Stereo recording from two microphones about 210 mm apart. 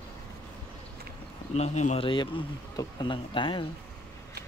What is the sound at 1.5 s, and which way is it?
Speech, 30° left (ahead or behind).